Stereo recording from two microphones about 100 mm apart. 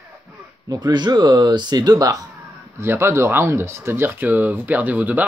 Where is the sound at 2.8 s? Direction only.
25° right (ahead or behind).